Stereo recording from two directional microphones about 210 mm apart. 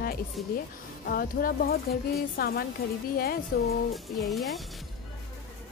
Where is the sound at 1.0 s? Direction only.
45° left (ahead or behind).